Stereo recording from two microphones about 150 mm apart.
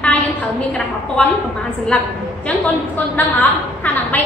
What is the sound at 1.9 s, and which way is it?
Speech, 5° left (ahead or behind).